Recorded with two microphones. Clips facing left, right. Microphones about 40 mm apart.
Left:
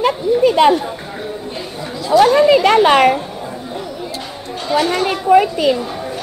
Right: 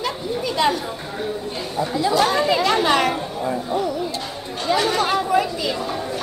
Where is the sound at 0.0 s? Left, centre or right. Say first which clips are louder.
Left 11 dB; left.